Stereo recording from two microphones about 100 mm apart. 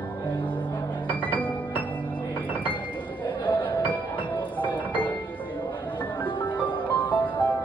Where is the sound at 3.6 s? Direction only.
15° left (ahead or behind).